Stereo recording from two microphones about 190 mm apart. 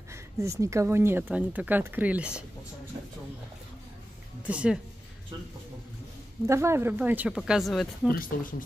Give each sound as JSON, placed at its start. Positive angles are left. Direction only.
{"t": 0.1, "sound": "speech", "side_deg": -15}
{"t": 4.4, "sound": "speech", "side_deg": -5}
{"t": 6.4, "sound": "speech", "side_deg": -15}
{"t": 8.1, "sound": "speech", "side_deg": 45}